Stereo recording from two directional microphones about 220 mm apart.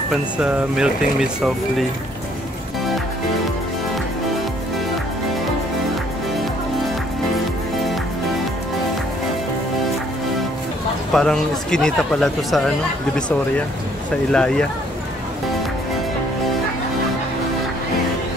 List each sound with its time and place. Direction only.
0.1 s speech: 5° right (ahead or behind)
11.1 s speech: 5° left (ahead or behind)
14.3 s speech: 5° left (ahead or behind)